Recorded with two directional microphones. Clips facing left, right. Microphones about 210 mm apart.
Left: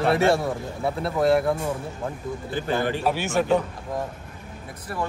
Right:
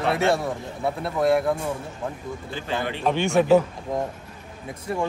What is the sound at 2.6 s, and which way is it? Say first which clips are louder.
Speech: left 4 dB; 45° left (ahead or behind).